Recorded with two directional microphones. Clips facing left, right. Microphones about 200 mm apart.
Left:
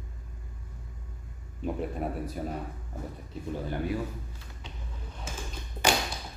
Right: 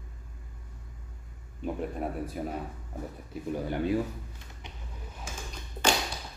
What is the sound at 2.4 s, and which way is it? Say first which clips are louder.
Speech: right 1 dB; 5° right (ahead or behind).